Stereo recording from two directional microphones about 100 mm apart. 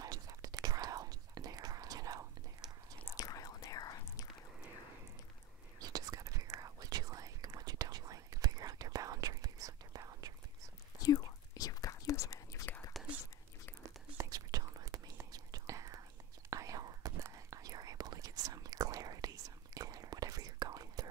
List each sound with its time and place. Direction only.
0.0 s whispering: 40° right (ahead or behind)
3.2 s whispering: 35° left (ahead or behind)
5.8 s whispering: 40° right (ahead or behind)
11.0 s whispering: 35° left (ahead or behind)
14.1 s whispering: 40° right (ahead or behind)